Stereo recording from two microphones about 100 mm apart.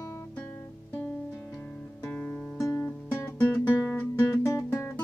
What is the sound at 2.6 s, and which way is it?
Music, 25° left (ahead or behind).